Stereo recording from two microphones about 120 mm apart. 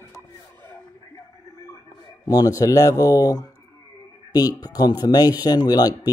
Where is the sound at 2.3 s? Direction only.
30° left (ahead or behind).